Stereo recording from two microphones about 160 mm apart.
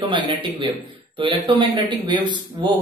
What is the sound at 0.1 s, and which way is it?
A man's voice, 30° right (ahead or behind).